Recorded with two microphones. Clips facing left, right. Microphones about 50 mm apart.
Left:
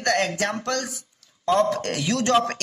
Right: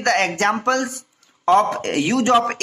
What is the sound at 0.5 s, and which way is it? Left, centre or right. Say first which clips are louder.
A man's voice: right 7 dB; right.